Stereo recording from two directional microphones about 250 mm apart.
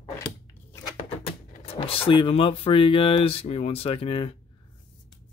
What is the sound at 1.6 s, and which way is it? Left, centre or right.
Speech, left.